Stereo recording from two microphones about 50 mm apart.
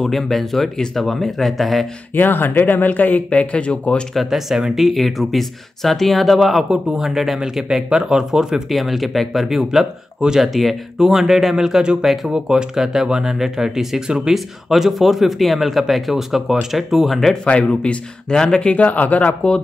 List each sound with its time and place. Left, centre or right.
0.0 s speech: centre
2.1 s speech: left
4.1 s speech: centre
6.4 s speech: centre
12.0 s speech: centre
12.3 s speech: centre
17.5 s speech: left
18.3 s speech: centre
18.7 s speech: left